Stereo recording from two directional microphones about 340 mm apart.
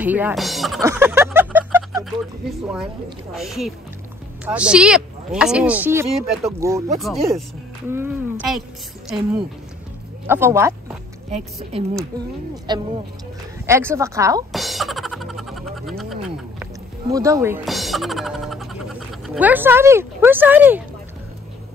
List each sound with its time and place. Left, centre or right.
0.0 s speech: centre
3.3 s speech: centre
10.2 s speech: centre
11.2 s a woman's voice: centre
13.7 s music: centre
17.1 s speech: centre